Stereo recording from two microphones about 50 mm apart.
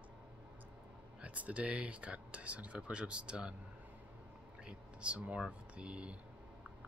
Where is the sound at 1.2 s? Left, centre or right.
Right.